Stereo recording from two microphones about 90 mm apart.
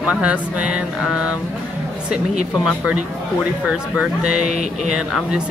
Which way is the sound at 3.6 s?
10° right (ahead or behind).